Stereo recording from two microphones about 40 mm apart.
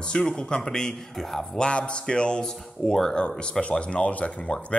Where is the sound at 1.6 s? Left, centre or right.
Left; by 3.1 s centre.